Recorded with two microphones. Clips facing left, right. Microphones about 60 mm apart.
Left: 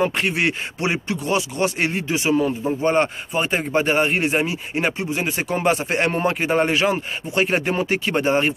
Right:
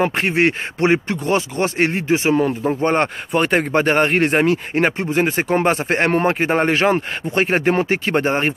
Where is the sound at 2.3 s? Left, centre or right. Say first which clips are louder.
Right 3 dB; right.